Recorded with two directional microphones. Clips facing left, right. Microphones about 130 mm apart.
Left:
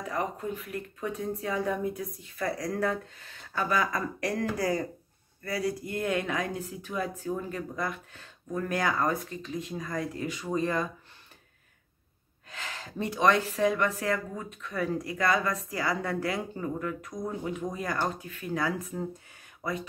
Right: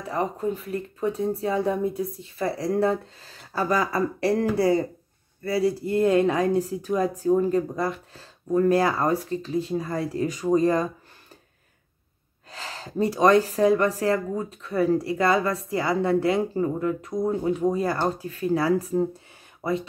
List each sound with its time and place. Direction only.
0.1 s speech: 30° right (ahead or behind)
12.4 s speech: 35° right (ahead or behind)